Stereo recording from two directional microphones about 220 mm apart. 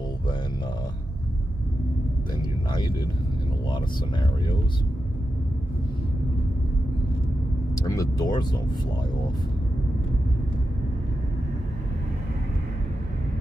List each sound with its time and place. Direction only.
7.8 s speech: 15° left (ahead or behind)